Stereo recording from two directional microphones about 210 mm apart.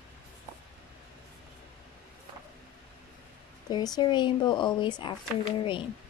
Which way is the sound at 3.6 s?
20° left (ahead or behind).